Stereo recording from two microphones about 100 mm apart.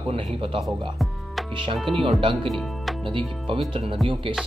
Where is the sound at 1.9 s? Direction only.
60° right (ahead or behind).